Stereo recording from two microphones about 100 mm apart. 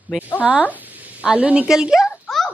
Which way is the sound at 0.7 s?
15° right (ahead or behind).